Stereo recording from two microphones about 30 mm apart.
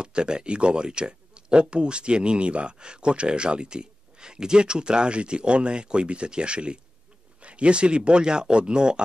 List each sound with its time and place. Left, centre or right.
0.0 s speech: right